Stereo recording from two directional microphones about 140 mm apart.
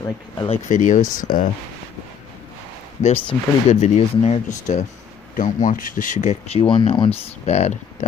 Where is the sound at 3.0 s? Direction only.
50° left (ahead or behind).